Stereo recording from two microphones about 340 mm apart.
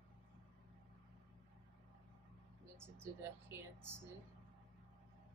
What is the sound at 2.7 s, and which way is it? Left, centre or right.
Speech, centre.